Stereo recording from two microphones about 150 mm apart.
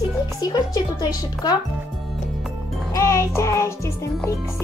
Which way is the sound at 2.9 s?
20° left (ahead or behind).